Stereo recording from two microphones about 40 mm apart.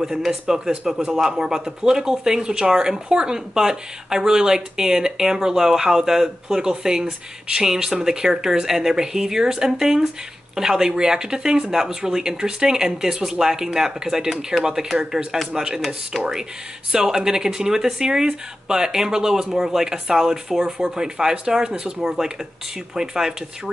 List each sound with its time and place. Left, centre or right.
0.0 s speech: centre
16.1 s speech: centre
16.9 s speech: centre